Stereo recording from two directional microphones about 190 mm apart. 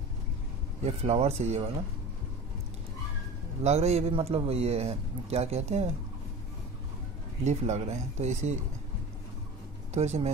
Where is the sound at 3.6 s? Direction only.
35° right (ahead or behind).